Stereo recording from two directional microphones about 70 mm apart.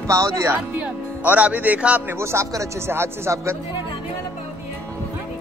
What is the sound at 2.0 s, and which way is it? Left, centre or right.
Speech, right.